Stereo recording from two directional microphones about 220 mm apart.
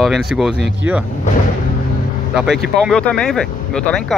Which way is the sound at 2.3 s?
Centre (ahead or behind).